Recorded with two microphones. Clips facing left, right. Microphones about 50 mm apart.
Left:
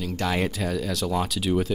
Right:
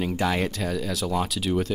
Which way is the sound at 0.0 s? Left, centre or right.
Centre.